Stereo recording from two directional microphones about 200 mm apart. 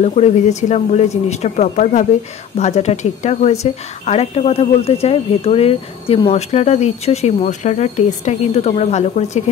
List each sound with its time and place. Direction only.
0.0 s speech: 35° left (ahead or behind)